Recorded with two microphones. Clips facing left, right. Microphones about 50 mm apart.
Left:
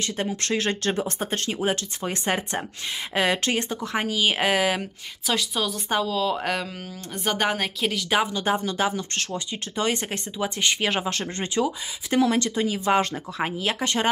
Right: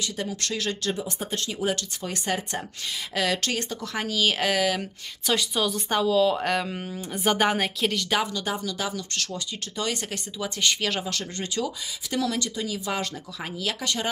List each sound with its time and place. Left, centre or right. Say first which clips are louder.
0.0 s speech: left 3 dB; left
5.2 s speech: right 1 dB; centre
6.7 s speech: right 3 dB; centre
7.2 s speech: right 2 dB; centre
8.1 s speech: left 4 dB; left